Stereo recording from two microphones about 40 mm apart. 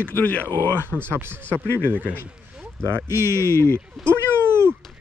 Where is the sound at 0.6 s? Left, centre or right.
Right.